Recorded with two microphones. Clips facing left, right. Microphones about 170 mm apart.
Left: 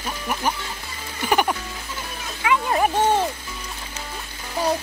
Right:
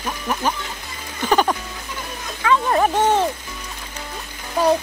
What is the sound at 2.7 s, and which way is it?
Speech, 50° right (ahead or behind).